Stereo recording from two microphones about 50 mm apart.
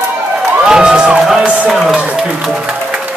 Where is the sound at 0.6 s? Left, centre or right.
Centre.